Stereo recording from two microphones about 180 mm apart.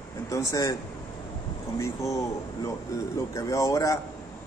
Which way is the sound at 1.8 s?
15° left (ahead or behind).